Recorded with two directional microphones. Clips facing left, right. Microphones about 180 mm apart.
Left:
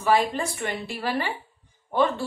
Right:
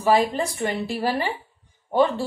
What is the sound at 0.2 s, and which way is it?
Speech, 35° right (ahead or behind).